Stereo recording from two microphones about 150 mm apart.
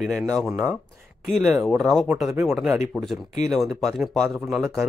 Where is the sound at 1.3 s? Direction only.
Centre (ahead or behind).